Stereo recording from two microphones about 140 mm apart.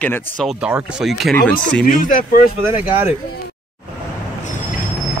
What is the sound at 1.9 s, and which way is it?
Speech, 75° left (ahead or behind).